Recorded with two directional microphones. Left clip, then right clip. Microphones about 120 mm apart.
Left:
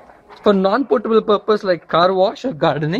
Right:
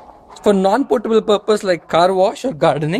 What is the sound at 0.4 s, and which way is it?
Speech, 10° right (ahead or behind).